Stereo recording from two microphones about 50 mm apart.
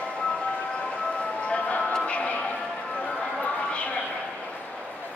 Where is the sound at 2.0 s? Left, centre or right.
Left.